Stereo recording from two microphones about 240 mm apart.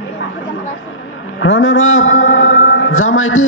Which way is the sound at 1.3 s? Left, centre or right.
Left.